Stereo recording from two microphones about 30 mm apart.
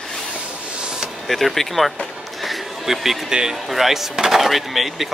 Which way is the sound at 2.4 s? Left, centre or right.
Centre.